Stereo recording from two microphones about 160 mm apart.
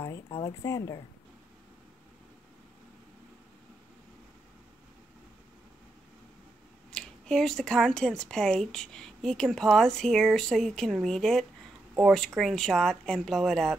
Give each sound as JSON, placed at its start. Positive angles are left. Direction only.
{"t": 0.0, "sound": "speech", "side_deg": 20}
{"t": 6.9, "sound": "speech", "side_deg": 5}